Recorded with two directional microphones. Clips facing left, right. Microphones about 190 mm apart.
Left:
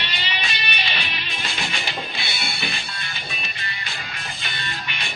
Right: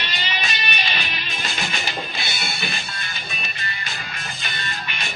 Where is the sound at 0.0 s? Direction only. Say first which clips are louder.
Right 1 dB; 45° right (ahead or behind).